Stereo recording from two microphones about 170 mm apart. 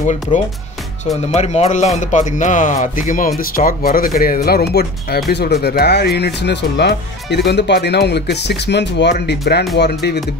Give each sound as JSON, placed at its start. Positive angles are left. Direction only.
{"t": 1.3, "sound": "speech", "side_deg": 40}
{"t": 9.2, "sound": "speech", "side_deg": 70}